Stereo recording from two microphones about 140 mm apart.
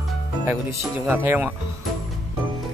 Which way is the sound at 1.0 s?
15° right (ahead or behind).